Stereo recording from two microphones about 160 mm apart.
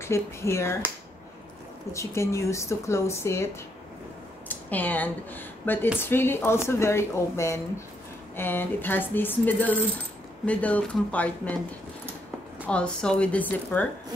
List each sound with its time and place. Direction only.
0.0 s speech: 15° left (ahead or behind)
1.9 s speech: 15° left (ahead or behind)
4.5 s speech: 10° left (ahead or behind)
12.6 s speech: 5° left (ahead or behind)